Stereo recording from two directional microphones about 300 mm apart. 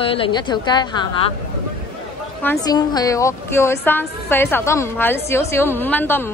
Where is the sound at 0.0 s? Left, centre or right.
Centre.